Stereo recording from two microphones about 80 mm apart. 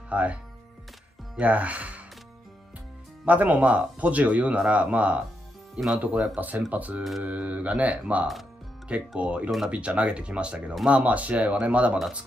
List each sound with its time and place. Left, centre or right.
0.1 s speech: centre
1.4 s speech: centre
3.3 s speech: centre
7.0 s speech: centre
7.2 s speech: centre